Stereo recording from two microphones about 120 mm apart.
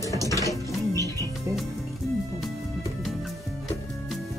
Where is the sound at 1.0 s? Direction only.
30° right (ahead or behind).